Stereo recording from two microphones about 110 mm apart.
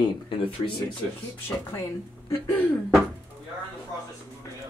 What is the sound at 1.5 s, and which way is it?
Speech, 20° left (ahead or behind).